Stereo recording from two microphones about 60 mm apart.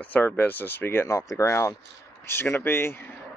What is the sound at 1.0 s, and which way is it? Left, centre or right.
Speech, left.